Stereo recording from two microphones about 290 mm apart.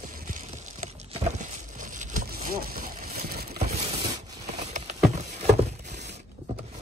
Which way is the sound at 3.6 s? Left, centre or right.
Centre.